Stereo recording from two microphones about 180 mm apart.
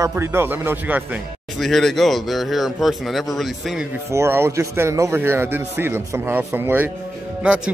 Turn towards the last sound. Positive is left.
turn(degrees=-5)  # may be behind; listen again after turning